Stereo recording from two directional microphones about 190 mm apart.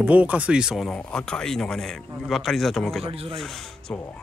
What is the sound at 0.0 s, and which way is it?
Speech, 10° right (ahead or behind).